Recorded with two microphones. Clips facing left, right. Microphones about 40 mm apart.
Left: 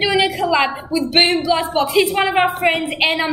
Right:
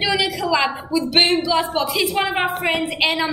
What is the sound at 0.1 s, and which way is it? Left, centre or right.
A woman's voice, left.